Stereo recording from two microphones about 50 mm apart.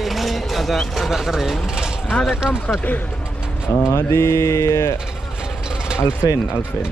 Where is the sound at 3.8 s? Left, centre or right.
Left.